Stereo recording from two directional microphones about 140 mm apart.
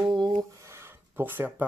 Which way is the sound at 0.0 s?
30° right (ahead or behind).